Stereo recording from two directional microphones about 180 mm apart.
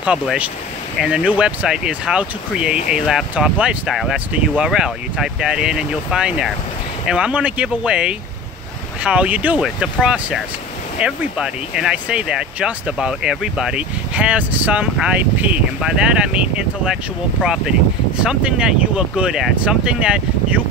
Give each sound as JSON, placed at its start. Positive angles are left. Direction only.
{"t": 0.0, "sound": "speech", "side_deg": -5}